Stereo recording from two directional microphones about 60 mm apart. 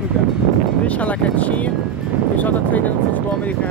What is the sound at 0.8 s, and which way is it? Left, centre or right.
Speech, left.